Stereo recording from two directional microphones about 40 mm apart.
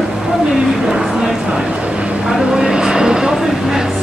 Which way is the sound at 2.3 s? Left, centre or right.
Centre.